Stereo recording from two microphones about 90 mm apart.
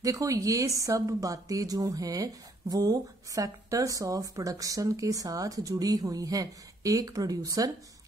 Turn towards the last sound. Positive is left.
turn(degrees=-45)  # may be behind; listen again after turning